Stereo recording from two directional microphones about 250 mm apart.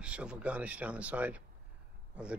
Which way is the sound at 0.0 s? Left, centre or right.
Centre.